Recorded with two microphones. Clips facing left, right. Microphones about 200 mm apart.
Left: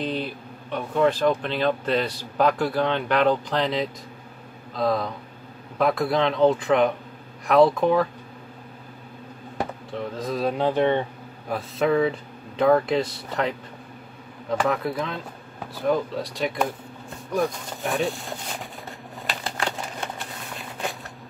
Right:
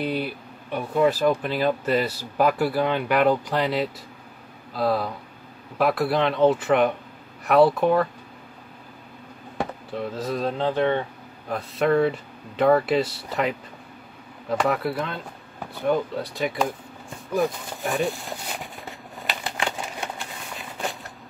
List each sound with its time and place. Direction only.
0.0 s speech: 10° right (ahead or behind)
10.1 s speech: 5° right (ahead or behind)
10.4 s speech: 15° left (ahead or behind)
11.5 s speech: centre (ahead or behind)
14.6 s speech: 5° right (ahead or behind)